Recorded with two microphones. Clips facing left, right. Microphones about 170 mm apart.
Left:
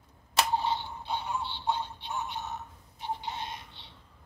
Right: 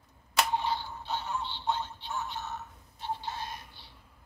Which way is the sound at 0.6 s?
20° left (ahead or behind).